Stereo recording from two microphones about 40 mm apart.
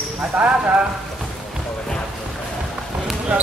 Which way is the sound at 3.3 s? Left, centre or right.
Right.